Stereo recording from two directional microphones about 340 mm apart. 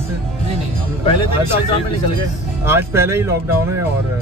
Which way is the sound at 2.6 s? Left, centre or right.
Centre.